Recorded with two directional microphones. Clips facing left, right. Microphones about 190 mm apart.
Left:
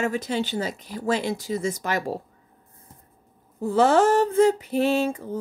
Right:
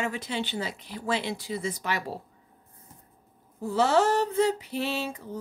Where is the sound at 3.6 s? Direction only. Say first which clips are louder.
Left 5 dB; 50° left (ahead or behind).